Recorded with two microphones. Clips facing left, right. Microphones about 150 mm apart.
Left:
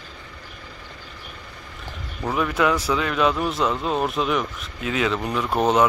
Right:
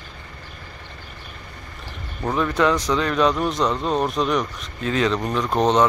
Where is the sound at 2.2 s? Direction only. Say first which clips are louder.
Right 2 dB; 10° left (ahead or behind).